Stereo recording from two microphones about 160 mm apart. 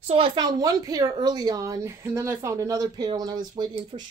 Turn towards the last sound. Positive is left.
turn(degrees=-25)  # may be behind; listen again after turning